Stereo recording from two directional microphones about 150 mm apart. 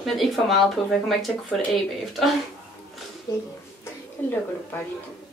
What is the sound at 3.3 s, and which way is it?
Speech, 25° left (ahead or behind).